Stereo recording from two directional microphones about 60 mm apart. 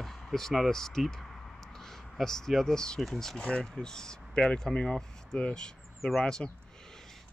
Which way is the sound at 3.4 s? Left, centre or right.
Centre.